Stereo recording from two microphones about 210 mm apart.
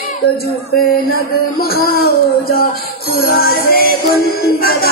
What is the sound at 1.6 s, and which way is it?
Music, 45° left (ahead or behind).